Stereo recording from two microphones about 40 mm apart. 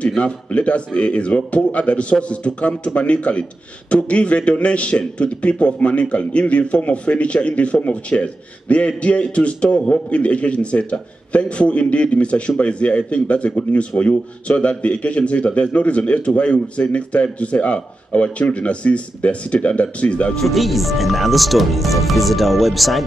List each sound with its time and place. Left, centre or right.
0.2 s a man's voice: left
20.3 s speech: centre